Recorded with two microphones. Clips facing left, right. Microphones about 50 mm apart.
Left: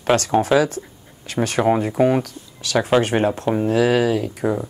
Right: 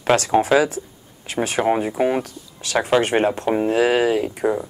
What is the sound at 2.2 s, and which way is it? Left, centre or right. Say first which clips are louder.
Speech: left 2 dB; right.